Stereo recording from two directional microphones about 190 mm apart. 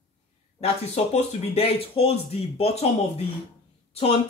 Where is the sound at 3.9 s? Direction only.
30° left (ahead or behind).